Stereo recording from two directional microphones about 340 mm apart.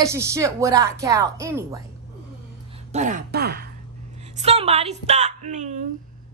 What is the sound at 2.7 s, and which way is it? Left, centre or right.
A woman's voice, centre.